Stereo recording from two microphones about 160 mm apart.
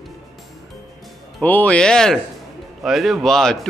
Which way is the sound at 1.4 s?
10° left (ahead or behind).